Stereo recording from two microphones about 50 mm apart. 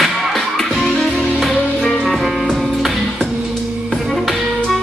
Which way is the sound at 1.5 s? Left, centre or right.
Right.